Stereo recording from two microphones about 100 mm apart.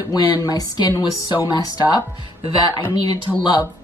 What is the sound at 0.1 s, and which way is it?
Speech, 40° left (ahead or behind).